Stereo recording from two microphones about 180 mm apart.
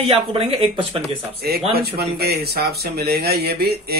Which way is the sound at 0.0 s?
35° right (ahead or behind).